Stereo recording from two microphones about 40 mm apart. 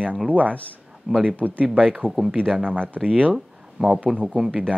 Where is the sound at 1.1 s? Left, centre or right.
Right.